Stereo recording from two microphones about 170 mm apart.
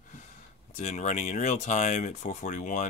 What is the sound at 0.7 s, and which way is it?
Speech, 40° left (ahead or behind).